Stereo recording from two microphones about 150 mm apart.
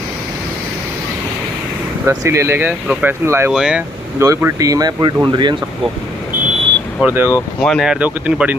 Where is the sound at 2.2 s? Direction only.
20° right (ahead or behind).